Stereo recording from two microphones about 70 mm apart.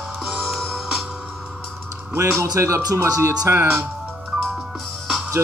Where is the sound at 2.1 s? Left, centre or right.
Right.